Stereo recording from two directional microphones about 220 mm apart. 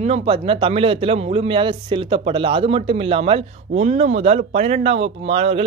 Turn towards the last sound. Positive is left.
turn(degrees=-25)  # may be behind; listen again after turning